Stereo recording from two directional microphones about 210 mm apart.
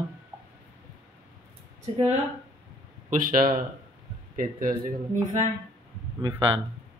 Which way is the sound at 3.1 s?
40° right (ahead or behind).